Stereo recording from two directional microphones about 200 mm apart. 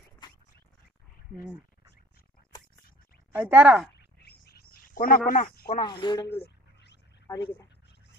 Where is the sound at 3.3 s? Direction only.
5° right (ahead or behind).